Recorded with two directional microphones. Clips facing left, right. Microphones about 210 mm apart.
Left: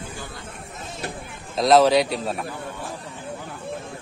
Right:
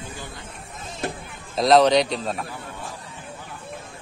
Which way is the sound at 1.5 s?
Centre (ahead or behind).